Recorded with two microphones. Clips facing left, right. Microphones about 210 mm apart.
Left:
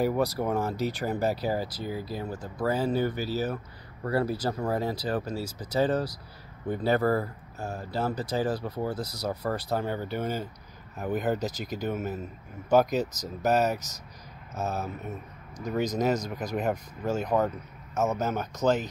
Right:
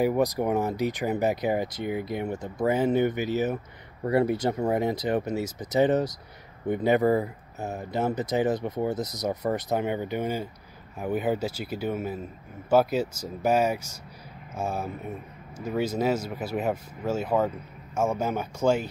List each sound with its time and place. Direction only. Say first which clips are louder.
0.0 s speech: right 3 dB; 15° right (ahead or behind)